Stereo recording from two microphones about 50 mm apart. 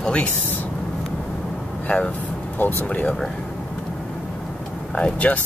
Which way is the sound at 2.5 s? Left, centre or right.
Left.